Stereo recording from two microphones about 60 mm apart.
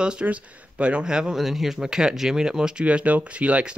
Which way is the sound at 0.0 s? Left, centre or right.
Centre.